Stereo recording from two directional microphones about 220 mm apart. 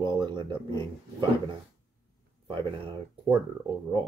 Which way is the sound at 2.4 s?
25° right (ahead or behind).